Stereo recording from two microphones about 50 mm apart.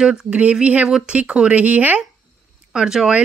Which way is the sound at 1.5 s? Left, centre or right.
Right.